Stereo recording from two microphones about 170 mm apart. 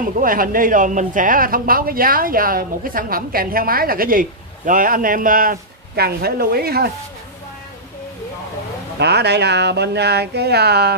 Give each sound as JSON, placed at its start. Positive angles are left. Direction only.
{"t": 0.0, "sound": "speech", "side_deg": -55}
{"t": 9.0, "sound": "speech", "side_deg": -75}